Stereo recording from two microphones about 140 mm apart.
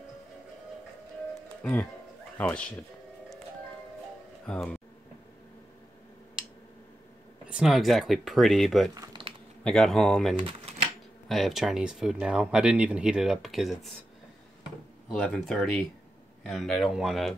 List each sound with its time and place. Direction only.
1.6 s speech: 15° left (ahead or behind)
4.5 s speech: 5° left (ahead or behind)
7.4 s speech: 5° right (ahead or behind)
8.9 s typing: 25° right (ahead or behind)
9.6 s speech: 5° left (ahead or behind)
15.0 s speech: 5° left (ahead or behind)